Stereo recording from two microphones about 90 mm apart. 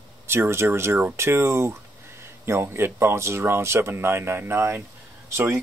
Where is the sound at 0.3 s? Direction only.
30° right (ahead or behind).